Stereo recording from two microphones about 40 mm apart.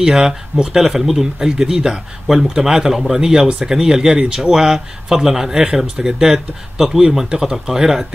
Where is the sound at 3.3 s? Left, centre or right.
Right.